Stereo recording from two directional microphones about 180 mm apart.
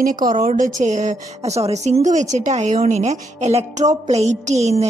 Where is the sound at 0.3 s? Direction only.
45° right (ahead or behind).